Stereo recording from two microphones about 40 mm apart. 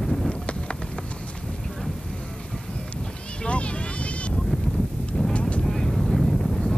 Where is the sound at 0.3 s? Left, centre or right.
Left.